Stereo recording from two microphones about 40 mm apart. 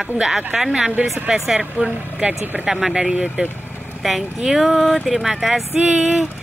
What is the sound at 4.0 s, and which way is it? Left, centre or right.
Speech, centre.